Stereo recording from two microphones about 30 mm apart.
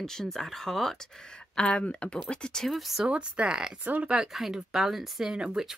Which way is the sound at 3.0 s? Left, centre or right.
Right.